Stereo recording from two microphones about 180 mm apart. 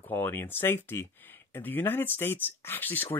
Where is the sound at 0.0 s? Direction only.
10° left (ahead or behind).